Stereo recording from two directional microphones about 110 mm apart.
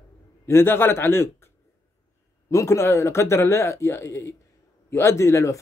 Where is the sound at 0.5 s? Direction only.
20° left (ahead or behind).